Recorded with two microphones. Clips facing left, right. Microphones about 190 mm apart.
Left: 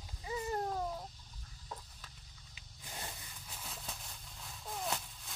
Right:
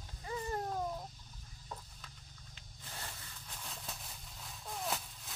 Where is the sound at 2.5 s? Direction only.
15° left (ahead or behind).